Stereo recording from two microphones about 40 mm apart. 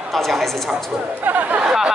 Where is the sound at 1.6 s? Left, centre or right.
Centre.